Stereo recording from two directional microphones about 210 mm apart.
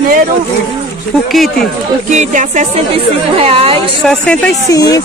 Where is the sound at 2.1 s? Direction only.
35° right (ahead or behind).